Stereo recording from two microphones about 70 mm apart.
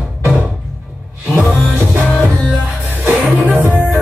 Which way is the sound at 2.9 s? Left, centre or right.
Right.